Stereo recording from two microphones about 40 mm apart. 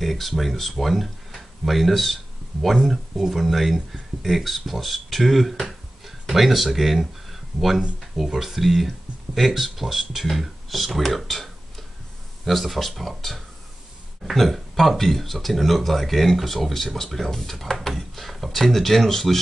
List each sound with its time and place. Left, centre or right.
0.0 s speech: centre
2.7 s speech: centre